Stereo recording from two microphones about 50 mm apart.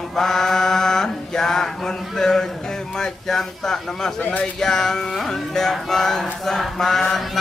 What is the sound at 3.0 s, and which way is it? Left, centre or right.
Speech, centre.